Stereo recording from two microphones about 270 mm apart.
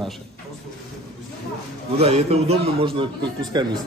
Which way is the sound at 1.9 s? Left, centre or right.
Right.